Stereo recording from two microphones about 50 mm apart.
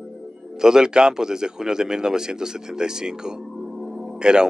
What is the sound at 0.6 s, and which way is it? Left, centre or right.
Speech, centre.